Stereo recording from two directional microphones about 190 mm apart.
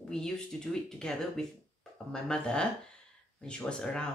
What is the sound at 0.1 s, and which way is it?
Speech, 5° left (ahead or behind).